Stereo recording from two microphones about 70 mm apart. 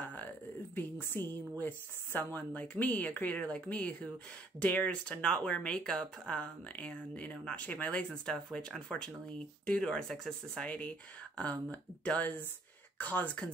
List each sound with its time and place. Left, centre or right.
0.0 s a sound: left
0.7 s speech: left; by 10.7 s centre
11.7 s speech: left